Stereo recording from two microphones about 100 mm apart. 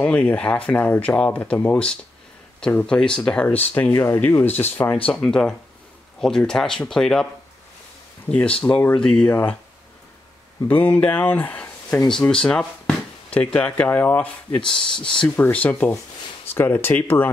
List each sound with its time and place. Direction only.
0.0 s speech: 10° left (ahead or behind)
5.0 s speech: 10° left (ahead or behind)
8.3 s speech: 10° left (ahead or behind)
10.7 s speech: 15° left (ahead or behind)
12.1 s speech: 5° left (ahead or behind)
15.2 s speech: 20° left (ahead or behind)